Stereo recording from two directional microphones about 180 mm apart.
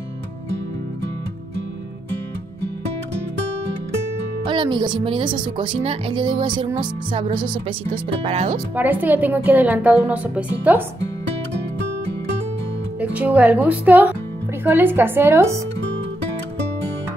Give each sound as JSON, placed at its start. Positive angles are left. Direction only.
{"t": 4.5, "sound": "speech", "side_deg": -25}
{"t": 8.7, "sound": "a woman's voice", "side_deg": -10}
{"t": 13.0, "sound": "a woman's voice", "side_deg": -10}